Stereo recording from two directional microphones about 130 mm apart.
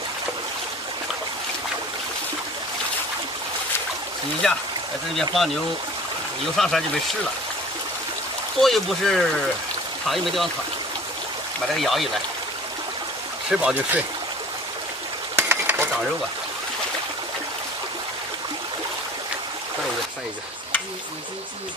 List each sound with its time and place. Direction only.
5.1 s speech: centre (ahead or behind)
6.5 s speech: centre (ahead or behind)
8.5 s speech: centre (ahead or behind)
11.7 s speech: centre (ahead or behind)
13.5 s speech: 10° right (ahead or behind)
15.3 s mechanisms: 20° right (ahead or behind)